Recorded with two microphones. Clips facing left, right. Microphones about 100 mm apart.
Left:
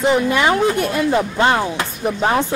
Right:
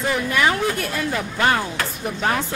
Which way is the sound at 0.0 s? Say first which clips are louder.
Left 5 dB; 20° left (ahead or behind).